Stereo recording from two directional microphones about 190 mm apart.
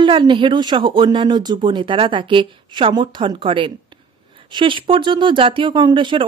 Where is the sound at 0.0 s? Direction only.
25° right (ahead or behind).